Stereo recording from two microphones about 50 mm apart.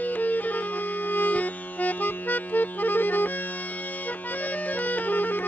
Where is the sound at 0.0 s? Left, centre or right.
Left.